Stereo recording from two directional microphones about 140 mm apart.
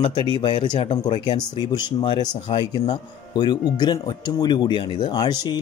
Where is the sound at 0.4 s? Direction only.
35° left (ahead or behind).